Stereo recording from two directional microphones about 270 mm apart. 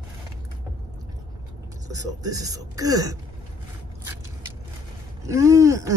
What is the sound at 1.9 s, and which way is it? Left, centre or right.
Speech, centre.